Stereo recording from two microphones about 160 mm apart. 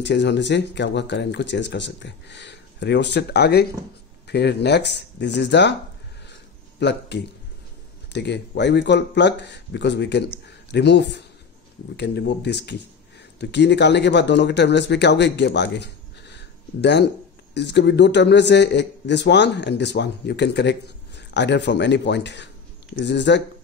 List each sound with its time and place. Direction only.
0.0 s a man's voice: 90° left
6.8 s a man's voice: 90° left